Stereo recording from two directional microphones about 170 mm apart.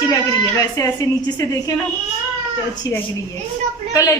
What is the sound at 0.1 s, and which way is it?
Speech, 20° left (ahead or behind).